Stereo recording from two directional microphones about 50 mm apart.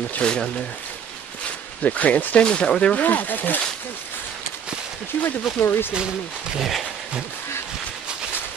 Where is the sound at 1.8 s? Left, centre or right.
Left.